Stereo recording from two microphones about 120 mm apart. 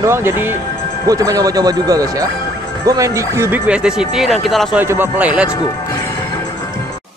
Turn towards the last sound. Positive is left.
turn(degrees=-10)  # may be behind; listen again after turning